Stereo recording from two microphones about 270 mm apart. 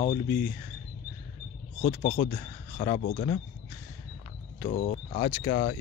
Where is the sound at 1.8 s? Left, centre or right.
Left.